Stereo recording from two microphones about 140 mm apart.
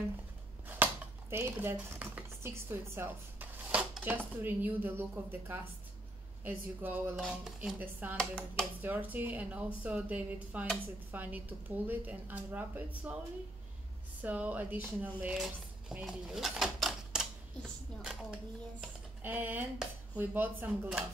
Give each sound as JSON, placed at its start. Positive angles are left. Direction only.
{"t": 1.3, "sound": "dishes", "side_deg": -15}
{"t": 4.4, "sound": "a woman's voice", "side_deg": -15}
{"t": 7.2, "sound": "speech", "side_deg": -5}
{"t": 7.8, "sound": "a woman's voice", "side_deg": -15}
{"t": 8.2, "sound": "speech", "side_deg": 5}
{"t": 8.8, "sound": "a woman's voice", "side_deg": -10}
{"t": 14.2, "sound": "a child's voice", "side_deg": -10}
{"t": 19.2, "sound": "a woman's voice", "side_deg": -15}